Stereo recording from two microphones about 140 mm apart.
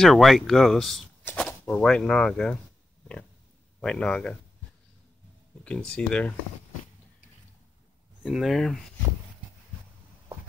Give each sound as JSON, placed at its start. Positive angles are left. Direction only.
{"t": 0.0, "sound": "speech", "side_deg": 0}
{"t": 3.8, "sound": "speech", "side_deg": 5}
{"t": 5.6, "sound": "speech", "side_deg": 5}
{"t": 8.3, "sound": "speech", "side_deg": 0}